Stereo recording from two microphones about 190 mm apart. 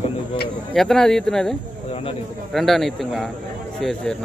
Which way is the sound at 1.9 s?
30° left (ahead or behind).